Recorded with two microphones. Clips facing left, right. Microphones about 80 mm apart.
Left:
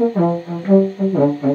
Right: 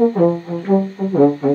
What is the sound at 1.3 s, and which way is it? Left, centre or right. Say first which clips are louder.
Brass instrument: right 1 dB; centre.